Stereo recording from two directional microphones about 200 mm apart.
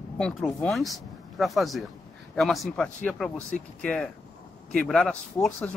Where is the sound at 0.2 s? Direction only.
5° left (ahead or behind).